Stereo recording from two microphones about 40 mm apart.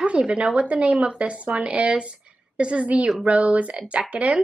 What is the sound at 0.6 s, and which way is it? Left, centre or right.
A woman's voice, right.